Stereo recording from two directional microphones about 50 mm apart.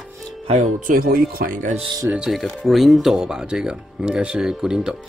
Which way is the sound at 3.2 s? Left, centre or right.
Centre.